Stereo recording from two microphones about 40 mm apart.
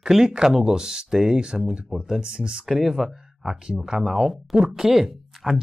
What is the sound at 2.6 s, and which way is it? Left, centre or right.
Speech, centre.